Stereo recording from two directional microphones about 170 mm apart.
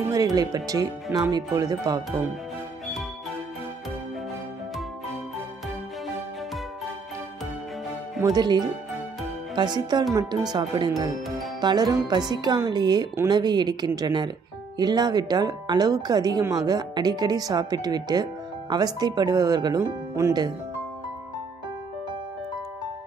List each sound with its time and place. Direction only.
0.1 s speech: 20° right (ahead or behind)
8.2 s speech: 25° right (ahead or behind)